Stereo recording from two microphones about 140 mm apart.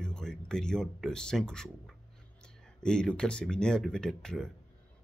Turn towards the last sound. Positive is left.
turn(degrees=5)  # may be behind; listen again after turning